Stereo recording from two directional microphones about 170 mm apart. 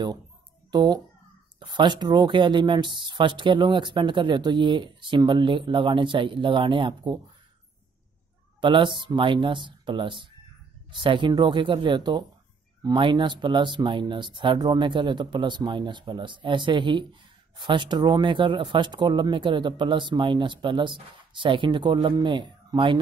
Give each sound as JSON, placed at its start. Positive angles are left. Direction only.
{"t": 0.7, "sound": "a child's voice", "side_deg": -25}
{"t": 8.5, "sound": "speech", "side_deg": -30}